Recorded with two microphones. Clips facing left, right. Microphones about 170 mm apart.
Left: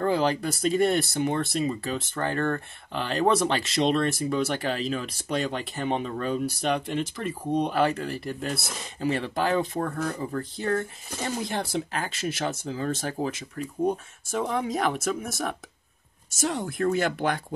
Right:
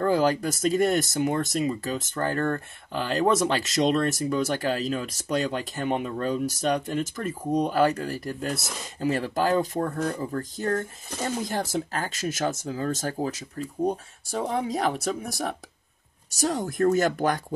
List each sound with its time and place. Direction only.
0.0 s speech: 40° right (ahead or behind)